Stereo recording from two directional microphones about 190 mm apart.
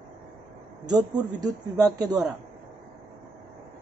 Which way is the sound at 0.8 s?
20° right (ahead or behind).